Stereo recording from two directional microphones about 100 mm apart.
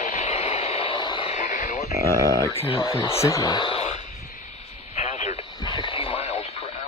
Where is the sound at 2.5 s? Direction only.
70° left (ahead or behind).